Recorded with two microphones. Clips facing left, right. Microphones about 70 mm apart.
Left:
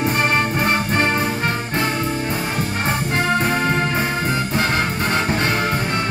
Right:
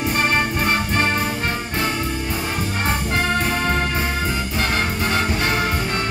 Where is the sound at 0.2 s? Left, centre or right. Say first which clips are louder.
Right 1 dB; centre.